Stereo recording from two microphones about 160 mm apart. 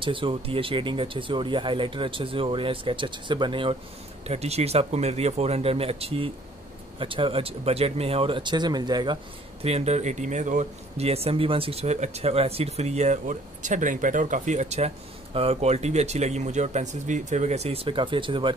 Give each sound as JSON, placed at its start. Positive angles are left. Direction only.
{"t": 0.0, "sound": "speech", "side_deg": -30}
{"t": 4.3, "sound": "speech", "side_deg": -40}